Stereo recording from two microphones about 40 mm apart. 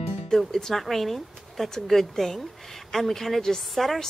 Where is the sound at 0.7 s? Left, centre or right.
Centre.